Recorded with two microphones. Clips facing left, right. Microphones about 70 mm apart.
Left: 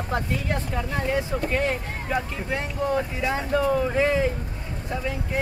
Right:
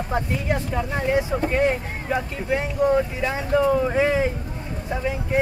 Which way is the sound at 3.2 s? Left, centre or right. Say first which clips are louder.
Right 1 dB; centre.